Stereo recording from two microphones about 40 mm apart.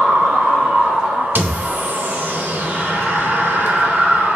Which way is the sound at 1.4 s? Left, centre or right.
Right.